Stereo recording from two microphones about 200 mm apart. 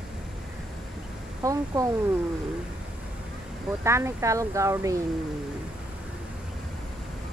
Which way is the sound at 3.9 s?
15° right (ahead or behind).